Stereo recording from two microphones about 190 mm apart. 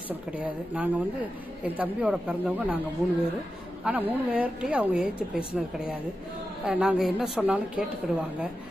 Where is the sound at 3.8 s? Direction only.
10° right (ahead or behind).